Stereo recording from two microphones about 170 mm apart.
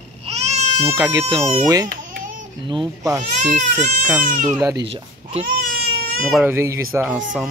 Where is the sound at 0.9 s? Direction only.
15° right (ahead or behind).